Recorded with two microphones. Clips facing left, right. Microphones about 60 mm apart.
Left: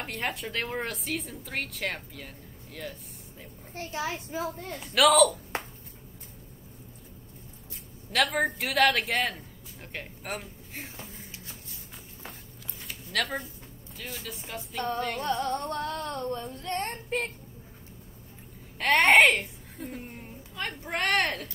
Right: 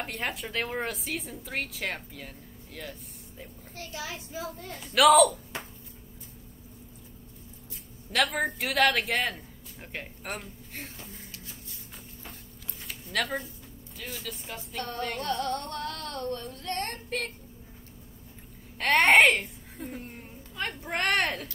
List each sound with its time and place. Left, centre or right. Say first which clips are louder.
0.0 s speech: even; centre
3.9 s a child's voice: left 5 dB; left
4.6 s speech: right 3 dB; centre
8.1 s speech: left 1 dB; centre
12.8 s a sound: even; centre
13.9 s speech: even; centre
15.0 s music: right 1 dB; centre
16.6 s child singing: left 1 dB; centre
18.8 s a child's voice: even; centre